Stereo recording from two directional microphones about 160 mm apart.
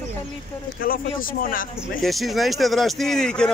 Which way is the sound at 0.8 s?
60° left (ahead or behind).